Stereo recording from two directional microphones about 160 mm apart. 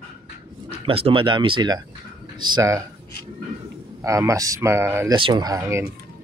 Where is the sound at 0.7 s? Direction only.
35° right (ahead or behind).